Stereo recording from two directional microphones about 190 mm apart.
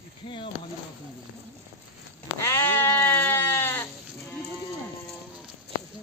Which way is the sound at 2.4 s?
15° left (ahead or behind).